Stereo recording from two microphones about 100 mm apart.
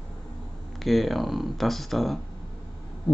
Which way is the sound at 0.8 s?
Centre (ahead or behind).